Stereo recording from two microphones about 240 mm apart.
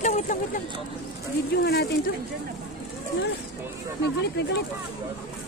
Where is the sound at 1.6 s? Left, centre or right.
Left.